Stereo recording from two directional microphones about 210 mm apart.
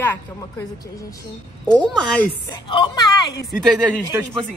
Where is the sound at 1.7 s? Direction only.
5° left (ahead or behind).